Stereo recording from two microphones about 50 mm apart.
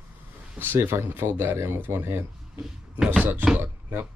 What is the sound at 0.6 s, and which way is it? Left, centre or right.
Speech, right.